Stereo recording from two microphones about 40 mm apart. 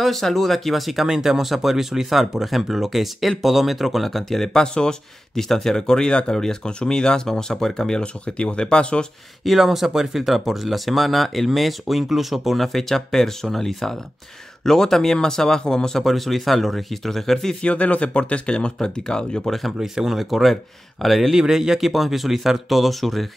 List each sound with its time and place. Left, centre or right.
0.0 s speech: centre
1.0 s speech: centre
8.0 s speech: left
9.4 s speech: centre
16.0 s speech: centre
17.6 s speech: left
19.8 s speech: centre
21.4 s speech: centre